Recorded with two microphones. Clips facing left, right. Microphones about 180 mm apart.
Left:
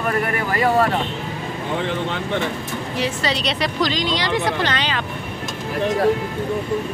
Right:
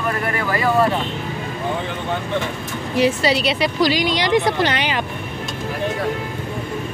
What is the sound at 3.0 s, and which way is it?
A woman's voice, 10° right (ahead or behind).